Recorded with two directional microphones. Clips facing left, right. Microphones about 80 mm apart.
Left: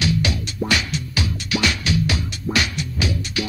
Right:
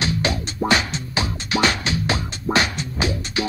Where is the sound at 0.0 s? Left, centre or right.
Right.